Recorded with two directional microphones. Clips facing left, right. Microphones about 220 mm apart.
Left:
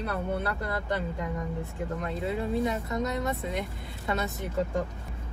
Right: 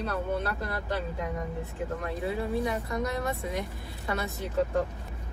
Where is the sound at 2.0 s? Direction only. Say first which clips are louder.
Left 1 dB; 20° left (ahead or behind).